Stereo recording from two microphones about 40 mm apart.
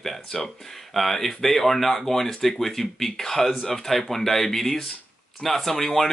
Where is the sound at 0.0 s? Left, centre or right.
Centre.